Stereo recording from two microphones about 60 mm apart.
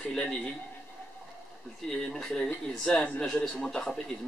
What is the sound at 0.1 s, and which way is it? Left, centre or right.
Speech, centre.